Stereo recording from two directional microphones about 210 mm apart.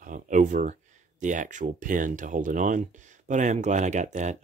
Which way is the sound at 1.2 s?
35° right (ahead or behind).